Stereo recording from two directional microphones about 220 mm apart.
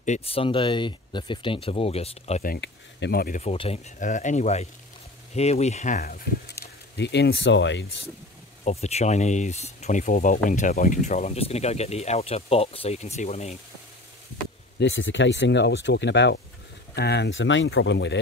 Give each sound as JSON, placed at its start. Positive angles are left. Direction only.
{"t": 0.0, "sound": "speech", "side_deg": 30}
{"t": 2.5, "sound": "speech", "side_deg": 50}
{"t": 8.6, "sound": "speech", "side_deg": 30}
{"t": 14.8, "sound": "speech", "side_deg": 60}